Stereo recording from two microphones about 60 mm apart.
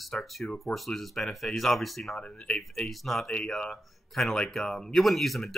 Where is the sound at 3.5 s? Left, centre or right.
Centre.